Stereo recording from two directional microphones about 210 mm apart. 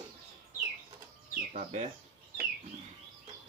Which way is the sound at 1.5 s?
35° right (ahead or behind).